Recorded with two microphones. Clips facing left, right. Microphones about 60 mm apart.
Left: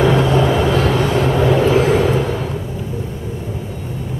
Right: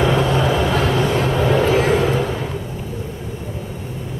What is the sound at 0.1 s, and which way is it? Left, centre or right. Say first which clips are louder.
Vehicle: left 3 dB; centre.